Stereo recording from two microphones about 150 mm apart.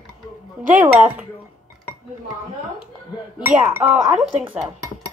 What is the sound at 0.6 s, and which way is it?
Speech, 10° right (ahead or behind).